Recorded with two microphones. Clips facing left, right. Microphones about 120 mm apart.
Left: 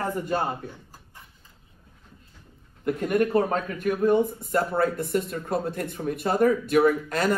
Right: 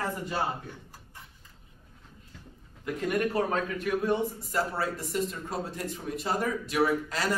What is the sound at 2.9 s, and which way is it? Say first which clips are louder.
Speech: left 6 dB; 45° left (ahead or behind).